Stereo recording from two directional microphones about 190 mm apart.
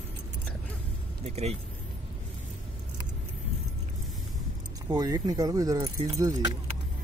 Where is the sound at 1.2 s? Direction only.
35° right (ahead or behind).